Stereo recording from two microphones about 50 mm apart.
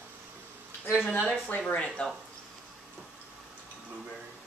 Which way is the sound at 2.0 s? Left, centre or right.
Left.